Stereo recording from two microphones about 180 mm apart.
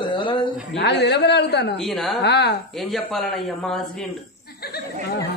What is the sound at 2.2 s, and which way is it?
Speech, 70° left (ahead or behind).